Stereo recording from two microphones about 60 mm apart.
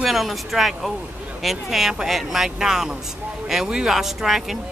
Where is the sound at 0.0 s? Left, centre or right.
Centre.